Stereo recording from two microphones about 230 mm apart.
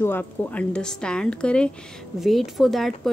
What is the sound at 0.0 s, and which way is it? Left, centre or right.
A woman's voice, centre.